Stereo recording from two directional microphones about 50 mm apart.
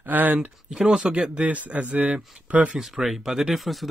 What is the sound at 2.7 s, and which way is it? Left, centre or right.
Speech, centre.